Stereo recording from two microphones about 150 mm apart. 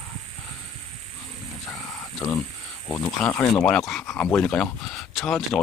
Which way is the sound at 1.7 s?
25° left (ahead or behind).